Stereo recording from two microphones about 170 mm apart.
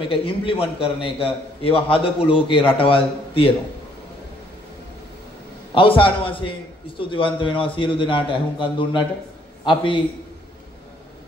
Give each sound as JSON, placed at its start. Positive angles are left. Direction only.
{"t": 0.0, "sound": "a man's voice", "side_deg": 30}
{"t": 5.8, "sound": "a man's voice", "side_deg": 30}